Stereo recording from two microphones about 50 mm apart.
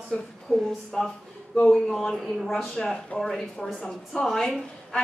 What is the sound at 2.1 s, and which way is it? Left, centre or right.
Speech, centre.